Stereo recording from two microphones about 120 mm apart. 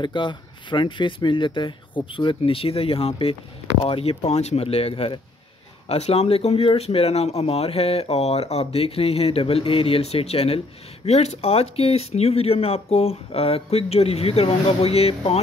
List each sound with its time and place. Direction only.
0.0 s speech: 40° left (ahead or behind)